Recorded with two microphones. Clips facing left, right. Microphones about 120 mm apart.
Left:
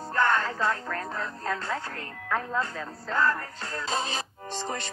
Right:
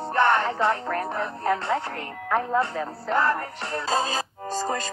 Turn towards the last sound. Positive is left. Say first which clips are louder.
# right 6 dB
turn(degrees=-40)  # may be behind; listen again after turning